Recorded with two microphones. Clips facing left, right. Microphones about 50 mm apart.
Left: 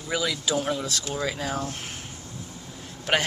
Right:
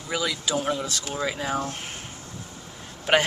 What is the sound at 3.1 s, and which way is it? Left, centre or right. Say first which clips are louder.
Speech: right 3 dB; centre.